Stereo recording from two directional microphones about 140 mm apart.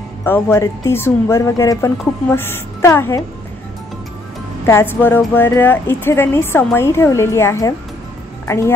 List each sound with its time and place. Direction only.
0.2 s speech: 15° left (ahead or behind)
4.6 s speech: 15° left (ahead or behind)